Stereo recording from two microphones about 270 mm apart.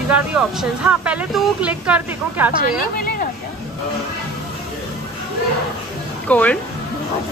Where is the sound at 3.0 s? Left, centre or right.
Left.